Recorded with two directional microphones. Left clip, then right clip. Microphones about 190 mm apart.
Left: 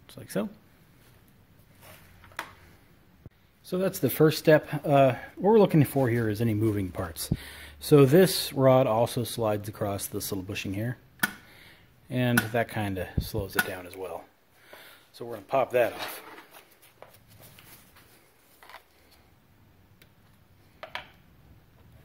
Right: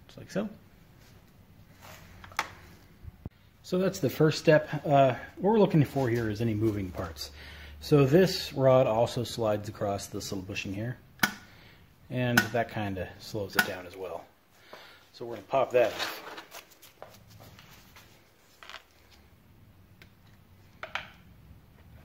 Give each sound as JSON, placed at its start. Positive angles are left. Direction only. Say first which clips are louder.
{"t": 0.0, "sound": "speech", "louder": "left 2 dB", "side_deg": 50}
{"t": 3.6, "sound": "speech", "louder": "even", "side_deg": 20}
{"t": 3.9, "sound": "speech", "louder": "left 7 dB", "side_deg": 40}
{"t": 11.6, "sound": "a sound", "louder": "left 2 dB", "side_deg": 40}
{"t": 12.5, "sound": "speech", "louder": "left 2 dB", "side_deg": 45}